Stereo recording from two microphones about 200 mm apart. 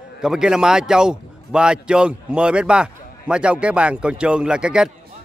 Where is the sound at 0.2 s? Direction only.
5° right (ahead or behind).